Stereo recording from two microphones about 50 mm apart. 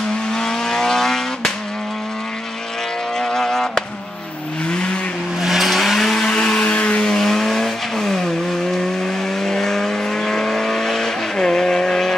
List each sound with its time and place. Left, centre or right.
0.3 s vehicle: centre
3.2 s vehicle: centre
5.4 s vehicle: centre
6.1 s vehicle: centre
7.0 s vehicle: centre
9.4 s vehicle: centre